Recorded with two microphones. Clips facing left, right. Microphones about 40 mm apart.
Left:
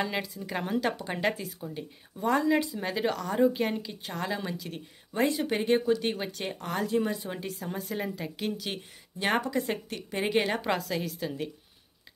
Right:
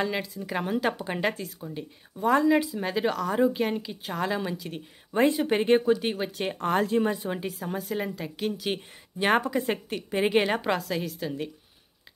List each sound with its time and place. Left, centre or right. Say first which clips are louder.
0.0 s a woman's voice: right 2 dB; centre
5.1 s speech: right 4 dB; right
5.9 s a woman's voice: right 2 dB; centre
6.6 s speech: right 5 dB; right
7.2 s a woman's voice: right 4 dB; centre
7.5 s a woman's voice: right 3 dB; centre
8.6 s a woman's voice: right 6 dB; centre